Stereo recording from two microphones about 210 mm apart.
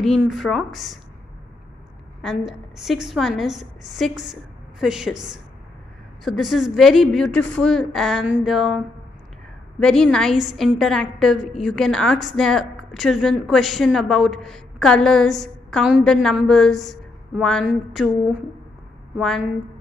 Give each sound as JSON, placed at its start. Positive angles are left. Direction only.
{"t": 0.2, "sound": "a woman's voice", "side_deg": 0}
{"t": 2.2, "sound": "a woman's voice", "side_deg": 0}
{"t": 6.2, "sound": "a woman's voice", "side_deg": 0}
{"t": 19.1, "sound": "a woman's voice", "side_deg": 0}